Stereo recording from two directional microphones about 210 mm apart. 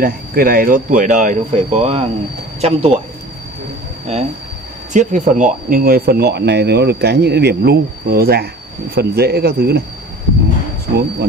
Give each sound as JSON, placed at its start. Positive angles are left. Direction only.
{"t": 0.0, "sound": "speech", "side_deg": -45}
{"t": 4.1, "sound": "speech", "side_deg": -30}
{"t": 10.9, "sound": "speech", "side_deg": -50}